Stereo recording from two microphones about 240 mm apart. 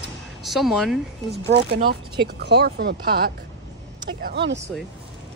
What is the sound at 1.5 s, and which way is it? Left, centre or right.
Speech, right.